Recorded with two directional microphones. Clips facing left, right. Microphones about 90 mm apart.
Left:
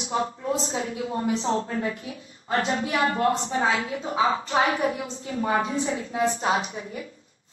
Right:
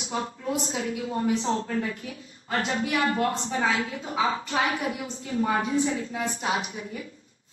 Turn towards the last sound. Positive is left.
turn(degrees=35)  # may be behind; listen again after turning